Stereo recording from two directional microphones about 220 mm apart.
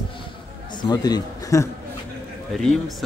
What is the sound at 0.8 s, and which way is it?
Speech, 20° left (ahead or behind).